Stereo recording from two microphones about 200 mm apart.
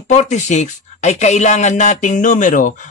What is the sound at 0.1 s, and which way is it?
Speech, 35° left (ahead or behind).